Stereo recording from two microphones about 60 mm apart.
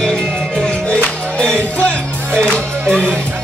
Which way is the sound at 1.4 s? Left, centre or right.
Centre.